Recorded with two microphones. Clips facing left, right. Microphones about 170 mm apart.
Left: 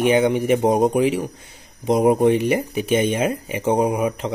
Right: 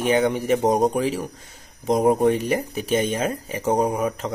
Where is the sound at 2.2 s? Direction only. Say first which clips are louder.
Left 3 dB; 40° right (ahead or behind).